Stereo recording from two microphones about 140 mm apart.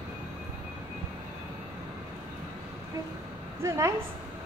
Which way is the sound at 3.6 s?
20° right (ahead or behind).